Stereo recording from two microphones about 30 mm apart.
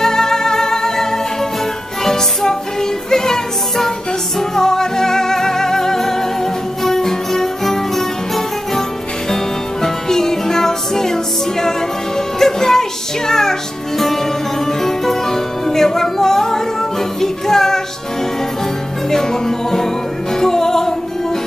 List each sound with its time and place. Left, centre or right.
0.0 s music: centre
9.3 s music: centre
12.4 s music: centre
19.0 s music: centre